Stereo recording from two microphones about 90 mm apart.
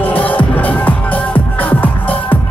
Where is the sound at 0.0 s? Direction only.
15° left (ahead or behind).